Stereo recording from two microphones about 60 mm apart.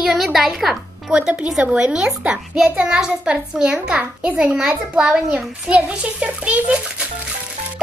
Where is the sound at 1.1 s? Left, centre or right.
Centre.